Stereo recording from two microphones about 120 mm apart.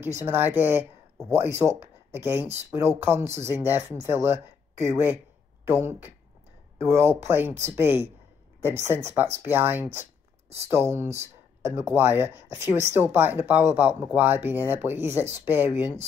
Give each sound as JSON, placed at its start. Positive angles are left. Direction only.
{"t": 0.0, "sound": "speech", "side_deg": -20}